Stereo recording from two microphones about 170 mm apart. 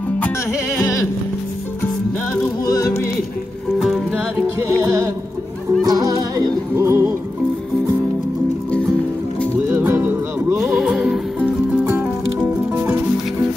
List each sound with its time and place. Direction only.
2.6 s music: 20° left (ahead or behind)
3.8 s music: centre (ahead or behind)
4.8 s music: 20° right (ahead or behind)
9.7 s music: 10° right (ahead or behind)
10.6 s music: centre (ahead or behind)